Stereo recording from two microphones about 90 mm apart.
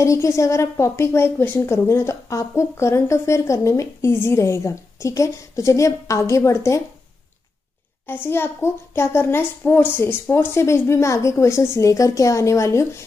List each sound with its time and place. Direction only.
0.0 s a woman's voice: 35° left (ahead or behind)
8.1 s a woman's voice: 25° left (ahead or behind)